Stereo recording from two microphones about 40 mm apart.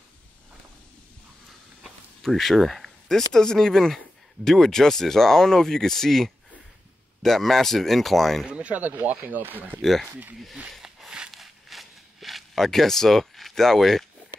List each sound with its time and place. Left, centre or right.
1.8 s speech: centre
8.5 s speech: right
8.7 s speech: right
9.8 s speech: centre
10.8 s a sound: centre
11.3 s a sound: centre